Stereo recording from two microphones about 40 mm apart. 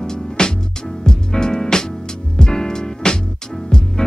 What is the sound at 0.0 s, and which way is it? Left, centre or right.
Music, centre.